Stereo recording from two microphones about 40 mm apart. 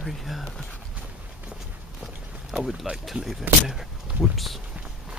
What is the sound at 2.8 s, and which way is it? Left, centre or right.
Speech, centre.